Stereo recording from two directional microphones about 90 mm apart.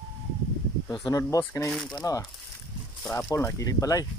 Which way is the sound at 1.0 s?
40° left (ahead or behind).